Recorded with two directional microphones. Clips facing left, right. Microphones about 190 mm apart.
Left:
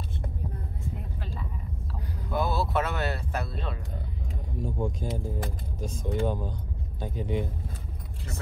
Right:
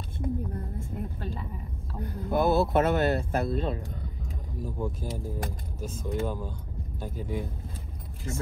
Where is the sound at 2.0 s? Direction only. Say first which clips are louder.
Right 4 dB; 50° right (ahead or behind).